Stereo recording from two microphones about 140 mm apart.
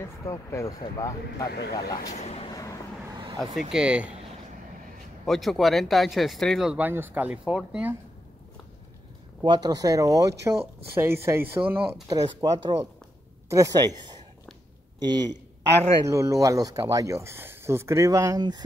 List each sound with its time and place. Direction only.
0.2 s speech: 20° left (ahead or behind)
2.1 s speech: 50° left (ahead or behind)
2.5 s vehicle: 25° left (ahead or behind)
3.7 s speech: 5° right (ahead or behind)
5.2 s speech: centre (ahead or behind)
9.4 s speech: 30° right (ahead or behind); by 11.8 s 15° right (ahead or behind)
12.1 s speech: 30° right (ahead or behind)
15.0 s a man's voice: 30° right (ahead or behind)